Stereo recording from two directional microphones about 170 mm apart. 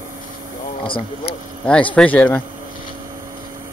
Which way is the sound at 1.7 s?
5° left (ahead or behind).